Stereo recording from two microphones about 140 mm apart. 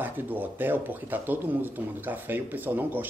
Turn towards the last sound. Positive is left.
turn(degrees=-15)  # may be behind; listen again after turning